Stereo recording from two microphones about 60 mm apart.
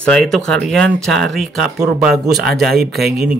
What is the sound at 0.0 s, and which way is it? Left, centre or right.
Speech, centre.